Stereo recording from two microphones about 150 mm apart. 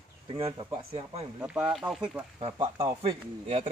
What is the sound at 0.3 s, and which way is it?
Speech, 40° right (ahead or behind).